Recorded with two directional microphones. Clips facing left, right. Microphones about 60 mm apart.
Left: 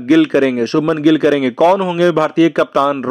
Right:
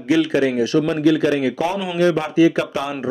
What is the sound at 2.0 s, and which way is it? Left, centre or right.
Speech, left.